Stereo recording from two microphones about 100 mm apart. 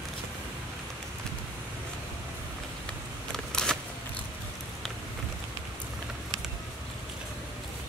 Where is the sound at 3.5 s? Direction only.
5° left (ahead or behind).